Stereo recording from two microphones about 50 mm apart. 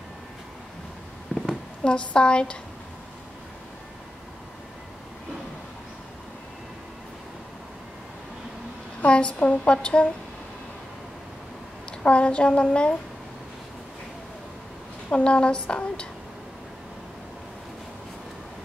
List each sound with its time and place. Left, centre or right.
1.3 s a sound: centre
1.9 s speech: centre
9.0 s speech: left
12.0 s speech: left
15.0 s speech: centre